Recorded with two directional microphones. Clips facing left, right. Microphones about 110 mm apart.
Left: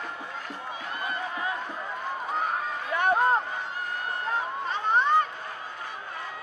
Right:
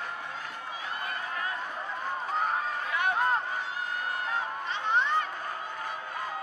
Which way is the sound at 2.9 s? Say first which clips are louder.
Left 5 dB; 35° left (ahead or behind).